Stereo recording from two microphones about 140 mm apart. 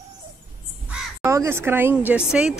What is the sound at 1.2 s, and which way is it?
Speech, 20° right (ahead or behind).